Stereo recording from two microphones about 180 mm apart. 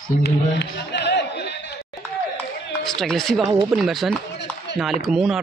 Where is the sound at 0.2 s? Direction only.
70° left (ahead or behind).